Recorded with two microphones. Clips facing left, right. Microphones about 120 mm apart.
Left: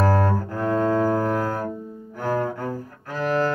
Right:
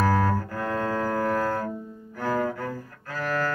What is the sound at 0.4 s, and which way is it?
Cello, 20° left (ahead or behind).